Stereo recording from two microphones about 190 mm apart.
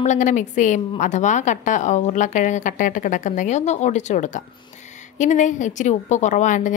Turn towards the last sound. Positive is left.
turn(degrees=40)  # may be behind; listen again after turning